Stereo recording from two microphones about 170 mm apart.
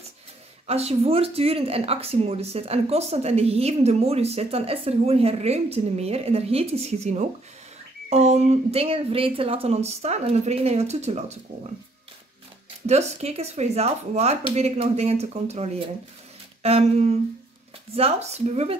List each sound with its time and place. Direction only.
0.7 s speech: 35° right (ahead or behind)
12.8 s speech: 40° right (ahead or behind)